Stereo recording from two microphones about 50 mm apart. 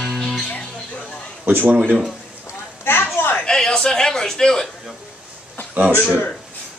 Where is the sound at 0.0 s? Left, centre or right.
Centre.